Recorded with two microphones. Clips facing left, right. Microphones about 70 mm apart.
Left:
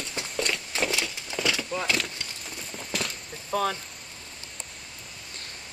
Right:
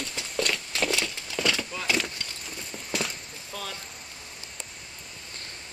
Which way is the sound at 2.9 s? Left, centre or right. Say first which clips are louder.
Right 1 dB; centre.